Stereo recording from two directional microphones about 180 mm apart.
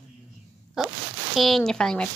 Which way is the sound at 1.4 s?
Centre (ahead or behind).